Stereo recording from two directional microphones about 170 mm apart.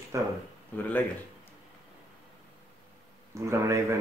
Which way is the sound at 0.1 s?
20° right (ahead or behind).